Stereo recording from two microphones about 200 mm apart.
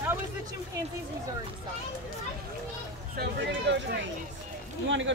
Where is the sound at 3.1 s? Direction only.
55° right (ahead or behind).